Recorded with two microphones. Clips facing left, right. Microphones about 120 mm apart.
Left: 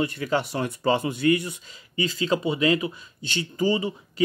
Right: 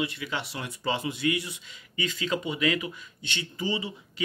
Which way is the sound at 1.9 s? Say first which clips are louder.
Left 5 dB; 30° left (ahead or behind).